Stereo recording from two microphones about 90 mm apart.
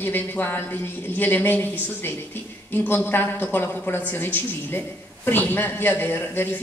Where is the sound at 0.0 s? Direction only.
20° left (ahead or behind).